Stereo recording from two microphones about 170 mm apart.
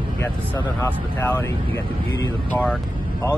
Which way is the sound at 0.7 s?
15° left (ahead or behind).